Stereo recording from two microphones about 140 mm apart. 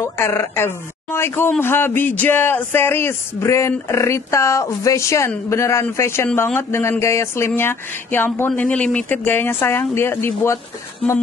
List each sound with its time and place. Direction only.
0.0 s speech: 20° left (ahead or behind)